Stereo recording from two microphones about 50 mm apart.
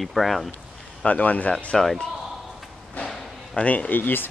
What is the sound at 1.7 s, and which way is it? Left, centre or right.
Speech, centre.